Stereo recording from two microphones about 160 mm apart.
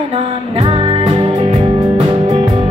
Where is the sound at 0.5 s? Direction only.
35° right (ahead or behind).